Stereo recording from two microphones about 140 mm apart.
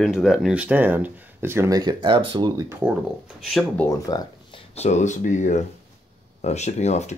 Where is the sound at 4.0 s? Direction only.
25° left (ahead or behind).